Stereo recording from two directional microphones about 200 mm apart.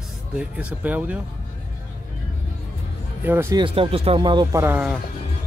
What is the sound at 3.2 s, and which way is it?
Speech, 10° right (ahead or behind).